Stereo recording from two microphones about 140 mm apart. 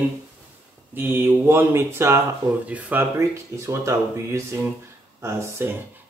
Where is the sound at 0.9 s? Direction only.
15° right (ahead or behind).